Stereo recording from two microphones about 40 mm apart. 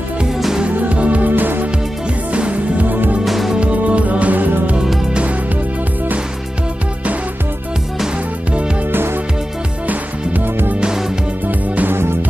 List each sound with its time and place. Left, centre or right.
0.7 s music: right
1.3 s music: right
2.3 s music: right
3.3 s music: centre
3.5 s music: right
4.3 s music: right
8.9 s music: right
9.8 s music: right